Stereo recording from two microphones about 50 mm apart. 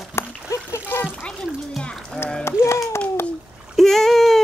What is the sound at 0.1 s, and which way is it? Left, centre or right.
Splash, left.